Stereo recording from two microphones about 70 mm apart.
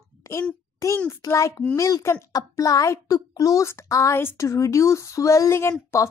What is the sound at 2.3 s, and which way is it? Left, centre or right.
A child's voice, left.